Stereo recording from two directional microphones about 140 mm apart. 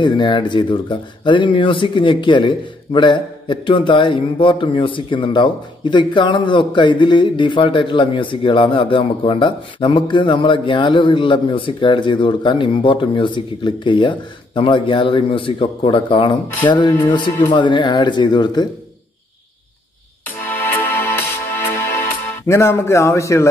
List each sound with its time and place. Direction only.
0.0 s speech: 35° left (ahead or behind)
20.2 s music: 15° left (ahead or behind)
22.3 s speech: 20° left (ahead or behind)